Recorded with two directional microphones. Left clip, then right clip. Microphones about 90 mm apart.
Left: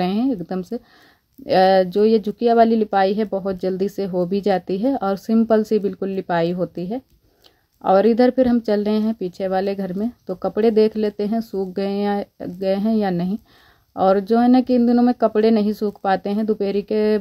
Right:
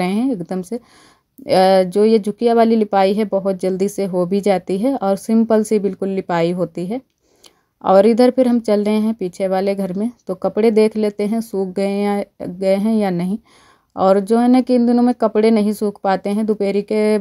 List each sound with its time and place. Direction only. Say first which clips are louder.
0.0 s speech: right 2 dB; 25° right (ahead or behind)